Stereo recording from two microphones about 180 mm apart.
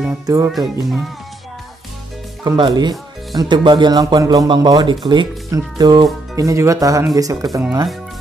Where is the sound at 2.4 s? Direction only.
25° right (ahead or behind).